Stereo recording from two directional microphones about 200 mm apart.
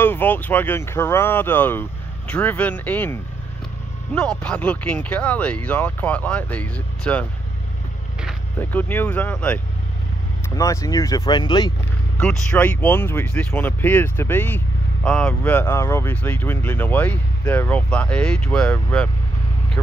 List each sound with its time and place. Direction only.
0.0 s speech: 10° left (ahead or behind)
8.5 s speech: 10° left (ahead or behind)
12.2 s speech: 5° left (ahead or behind)